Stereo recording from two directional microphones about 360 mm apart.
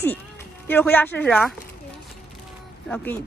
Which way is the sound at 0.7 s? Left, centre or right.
Centre.